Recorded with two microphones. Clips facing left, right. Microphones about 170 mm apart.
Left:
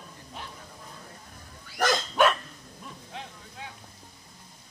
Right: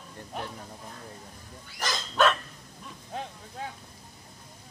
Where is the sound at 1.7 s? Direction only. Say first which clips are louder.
Left 8 dB; 55° left (ahead or behind).